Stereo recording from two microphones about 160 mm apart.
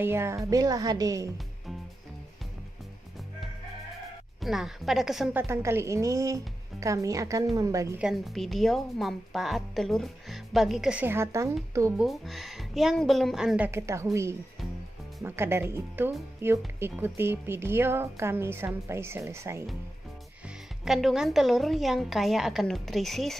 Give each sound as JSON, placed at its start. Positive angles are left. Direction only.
{"t": 0.0, "sound": "speech", "side_deg": -15}
{"t": 4.4, "sound": "speech", "side_deg": 0}
{"t": 5.3, "sound": "speech", "side_deg": -15}
{"t": 8.0, "sound": "speech", "side_deg": 0}
{"t": 12.0, "sound": "speech", "side_deg": 0}
{"t": 13.7, "sound": "speech", "side_deg": -15}
{"t": 15.2, "sound": "speech", "side_deg": -15}
{"t": 20.4, "sound": "speech", "side_deg": 0}